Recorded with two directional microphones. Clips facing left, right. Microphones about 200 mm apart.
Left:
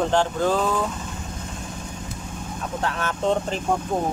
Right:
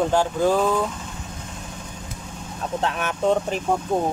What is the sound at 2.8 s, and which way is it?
Speech, 20° right (ahead or behind).